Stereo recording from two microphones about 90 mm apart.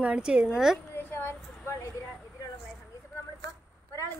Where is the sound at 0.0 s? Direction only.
10° right (ahead or behind).